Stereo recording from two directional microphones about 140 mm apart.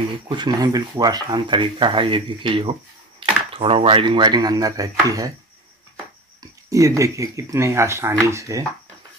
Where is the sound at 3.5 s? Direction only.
40° right (ahead or behind); by 5.3 s 25° right (ahead or behind).